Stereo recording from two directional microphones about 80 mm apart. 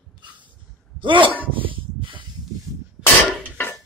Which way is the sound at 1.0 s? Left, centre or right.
Right.